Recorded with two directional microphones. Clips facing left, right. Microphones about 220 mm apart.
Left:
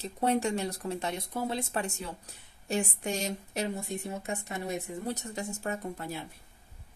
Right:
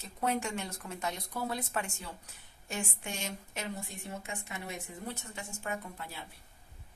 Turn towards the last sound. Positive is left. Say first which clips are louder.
# left 5 dB
turn(degrees=40)  # may be behind; listen again after turning